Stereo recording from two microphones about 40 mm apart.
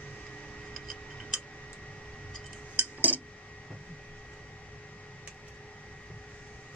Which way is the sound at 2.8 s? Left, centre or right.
Right.